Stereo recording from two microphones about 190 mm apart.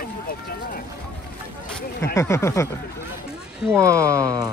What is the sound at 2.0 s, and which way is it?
Speech, 15° left (ahead or behind).